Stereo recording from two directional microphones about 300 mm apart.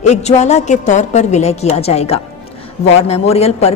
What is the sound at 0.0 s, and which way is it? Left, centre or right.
A woman's voice, left.